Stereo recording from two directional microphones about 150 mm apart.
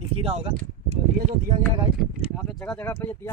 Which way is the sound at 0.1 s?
40° right (ahead or behind).